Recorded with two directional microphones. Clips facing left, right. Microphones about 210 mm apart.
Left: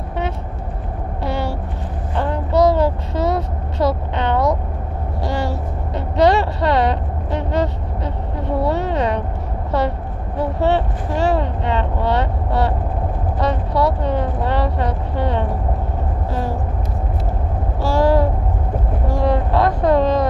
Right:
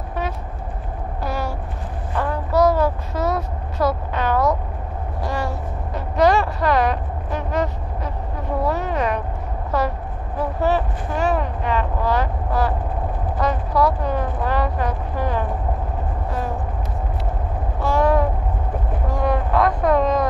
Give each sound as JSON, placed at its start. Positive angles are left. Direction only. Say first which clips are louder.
{"t": 1.2, "sound": "a sound", "louder": "left 3 dB", "side_deg": 30}
{"t": 2.1, "sound": "child singing", "louder": "left 2 dB", "side_deg": 25}
{"t": 5.9, "sound": "vehicle", "louder": "left 2 dB", "side_deg": 30}
{"t": 10.4, "sound": "speech", "louder": "left 3 dB", "side_deg": 30}
{"t": 17.7, "sound": "speech", "louder": "left 2 dB", "side_deg": 30}